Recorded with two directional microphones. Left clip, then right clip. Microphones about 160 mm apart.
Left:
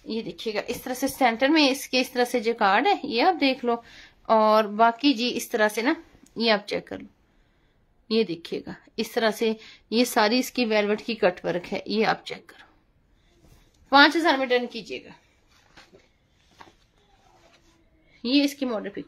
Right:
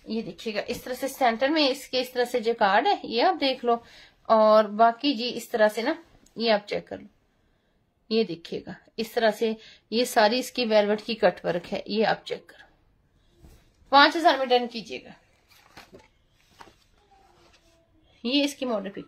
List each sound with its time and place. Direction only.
0.1 s speech: 35° left (ahead or behind)
8.1 s speech: 35° left (ahead or behind)
13.8 s speech: 35° left (ahead or behind)
18.2 s speech: 25° left (ahead or behind)